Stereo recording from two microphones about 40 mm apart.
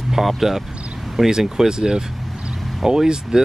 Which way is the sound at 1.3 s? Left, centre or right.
Centre.